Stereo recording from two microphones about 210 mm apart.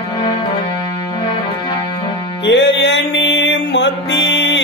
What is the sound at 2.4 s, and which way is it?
Mantra, 60° left (ahead or behind).